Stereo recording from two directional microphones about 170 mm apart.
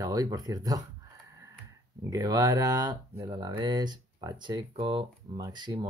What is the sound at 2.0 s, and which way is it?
Speech, 20° right (ahead or behind).